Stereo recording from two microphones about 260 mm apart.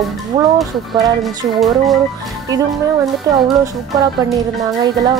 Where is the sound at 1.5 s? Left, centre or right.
Centre.